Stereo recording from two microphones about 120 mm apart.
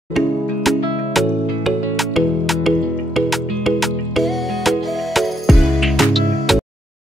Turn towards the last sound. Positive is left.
turn(degrees=0)  # may be behind; listen again after turning